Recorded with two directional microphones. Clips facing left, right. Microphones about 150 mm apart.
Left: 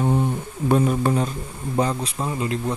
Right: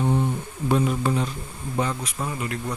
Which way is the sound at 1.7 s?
35° left (ahead or behind).